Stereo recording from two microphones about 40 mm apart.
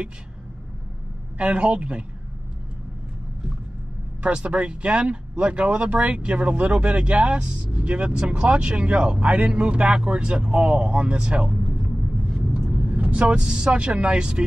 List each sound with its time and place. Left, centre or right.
1.4 s speech: right
4.2 s speech: right
11.8 s vehicle: centre
12.7 s speech: right